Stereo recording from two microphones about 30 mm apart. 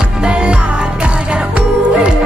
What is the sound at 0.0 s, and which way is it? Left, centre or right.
Music, right.